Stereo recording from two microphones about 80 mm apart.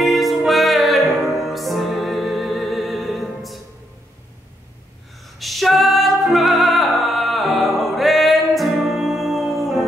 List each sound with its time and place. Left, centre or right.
0.0 s music: centre
5.4 s music: centre